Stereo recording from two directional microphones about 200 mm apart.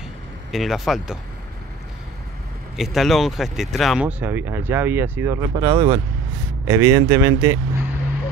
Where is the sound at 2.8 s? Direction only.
Centre (ahead or behind).